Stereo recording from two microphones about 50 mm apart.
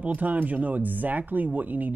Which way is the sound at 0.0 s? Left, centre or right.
Right.